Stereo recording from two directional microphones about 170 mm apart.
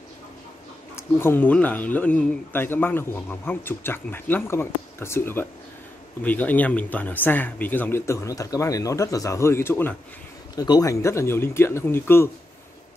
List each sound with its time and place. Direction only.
0.9 s speech: 15° left (ahead or behind)